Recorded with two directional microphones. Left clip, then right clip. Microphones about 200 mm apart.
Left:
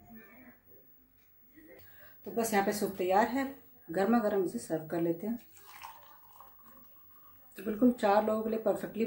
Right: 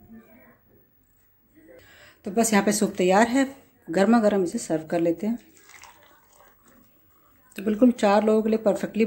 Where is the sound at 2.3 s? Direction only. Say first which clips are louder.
Right 8 dB; 45° right (ahead or behind).